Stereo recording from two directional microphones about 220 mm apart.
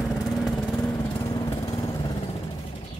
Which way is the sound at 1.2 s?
15° left (ahead or behind).